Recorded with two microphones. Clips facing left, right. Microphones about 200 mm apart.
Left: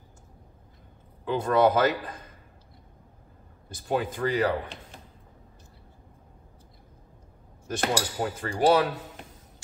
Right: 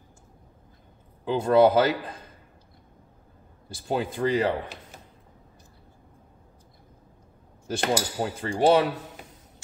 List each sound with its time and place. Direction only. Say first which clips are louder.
1.2 s cutlery: right 3 dB; 30° right (ahead or behind)
3.6 s cutlery: even; 30° right (ahead or behind)
7.6 s cutlery: right 2 dB; 30° right (ahead or behind)